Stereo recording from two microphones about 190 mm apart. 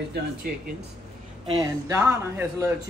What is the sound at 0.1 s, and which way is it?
Speech, 55° right (ahead or behind).